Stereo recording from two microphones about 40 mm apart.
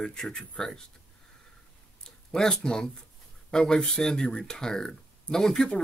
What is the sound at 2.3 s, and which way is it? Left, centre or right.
Speech, centre.